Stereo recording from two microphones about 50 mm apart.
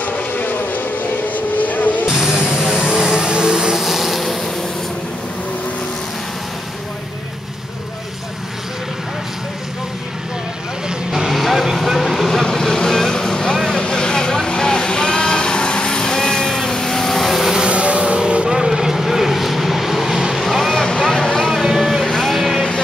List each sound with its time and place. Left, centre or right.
0.0 s vehicle: left
2.0 s vehicle: centre
3.8 s vehicle: centre
10.9 s vehicle: centre
17.6 s vehicle: right; by 22.7 s centre